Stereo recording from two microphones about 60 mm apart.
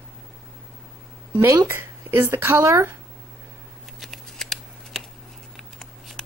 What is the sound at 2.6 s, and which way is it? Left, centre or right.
Speech, right.